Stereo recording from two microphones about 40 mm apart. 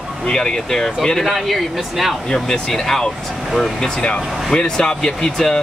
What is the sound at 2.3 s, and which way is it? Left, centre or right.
Speech, centre.